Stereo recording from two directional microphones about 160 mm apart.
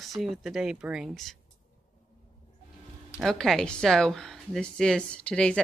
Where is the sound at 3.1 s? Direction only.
Centre (ahead or behind).